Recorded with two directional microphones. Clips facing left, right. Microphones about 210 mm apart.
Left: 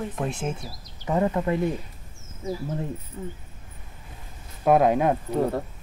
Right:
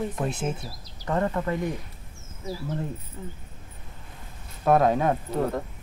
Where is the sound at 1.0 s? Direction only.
15° left (ahead or behind).